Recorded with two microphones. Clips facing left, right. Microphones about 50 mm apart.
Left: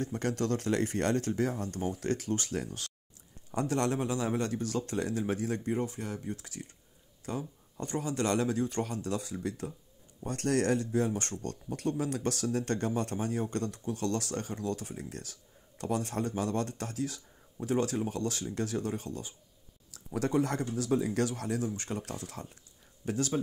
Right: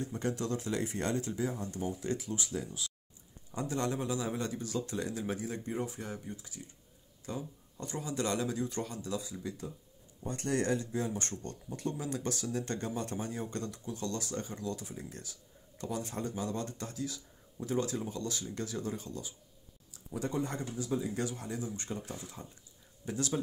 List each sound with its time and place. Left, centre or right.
0.0 s speech: left
4.0 s speech: left
6.3 s speech: left
7.2 s speech: left
10.9 s speech: left
11.4 s speech: left
19.9 s speech: left
23.0 s speech: left